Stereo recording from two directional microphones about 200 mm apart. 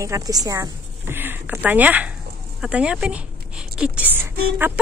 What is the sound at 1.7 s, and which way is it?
Speech, 10° right (ahead or behind).